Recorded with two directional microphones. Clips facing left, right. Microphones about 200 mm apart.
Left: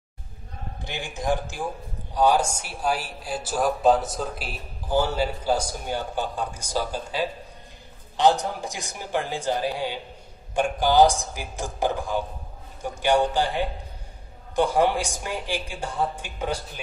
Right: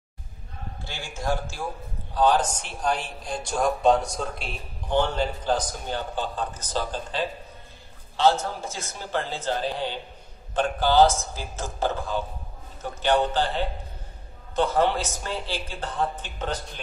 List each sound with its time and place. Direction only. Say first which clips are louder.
0.8 s speech: left 3 dB; 15° left (ahead or behind)